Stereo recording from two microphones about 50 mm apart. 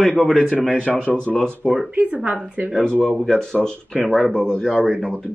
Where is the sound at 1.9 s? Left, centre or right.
Right.